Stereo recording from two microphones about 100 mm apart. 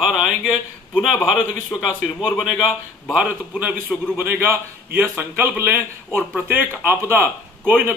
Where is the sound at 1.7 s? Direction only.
10° left (ahead or behind).